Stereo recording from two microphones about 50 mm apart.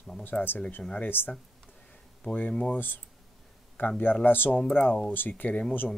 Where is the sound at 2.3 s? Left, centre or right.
Centre.